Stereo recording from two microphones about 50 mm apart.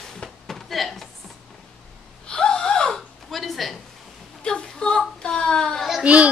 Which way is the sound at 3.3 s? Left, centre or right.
Centre.